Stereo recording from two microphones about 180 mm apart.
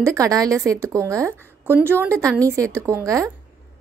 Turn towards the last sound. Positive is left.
turn(degrees=-15)  # may be behind; listen again after turning